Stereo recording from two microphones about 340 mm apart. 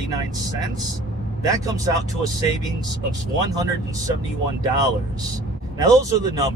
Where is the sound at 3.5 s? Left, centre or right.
Centre.